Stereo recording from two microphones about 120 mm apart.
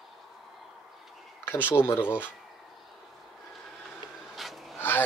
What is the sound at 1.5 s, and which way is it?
Speech, 20° left (ahead or behind).